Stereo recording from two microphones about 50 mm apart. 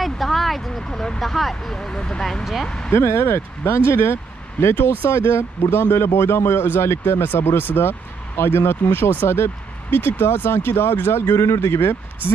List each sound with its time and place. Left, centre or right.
0.0 s vehicle: centre
0.8 s vehicle: centre
1.2 s speech: centre
2.9 s speech: left
7.3 s speech: left